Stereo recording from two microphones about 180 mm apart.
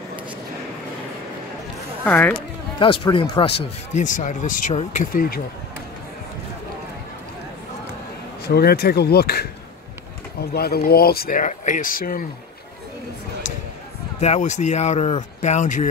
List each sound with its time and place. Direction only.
2.0 s speech: 10° left (ahead or behind)
2.3 s speech: 30° left (ahead or behind); by 5.4 s 55° left (ahead or behind)
8.5 s speech: 60° left (ahead or behind)
14.2 s speech: 40° left (ahead or behind)